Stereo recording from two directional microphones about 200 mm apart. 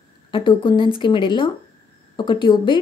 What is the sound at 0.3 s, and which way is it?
Speech, 25° left (ahead or behind).